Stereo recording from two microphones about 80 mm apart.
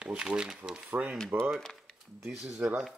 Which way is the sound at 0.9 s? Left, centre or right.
Centre.